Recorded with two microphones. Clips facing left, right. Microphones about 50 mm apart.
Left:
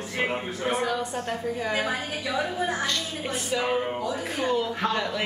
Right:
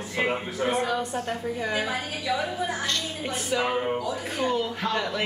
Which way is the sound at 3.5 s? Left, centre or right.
Centre.